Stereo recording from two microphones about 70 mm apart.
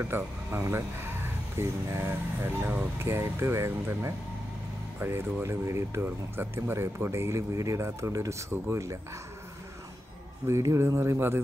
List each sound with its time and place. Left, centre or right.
0.0 s speech: right
5.9 s speech: right
10.4 s speech: right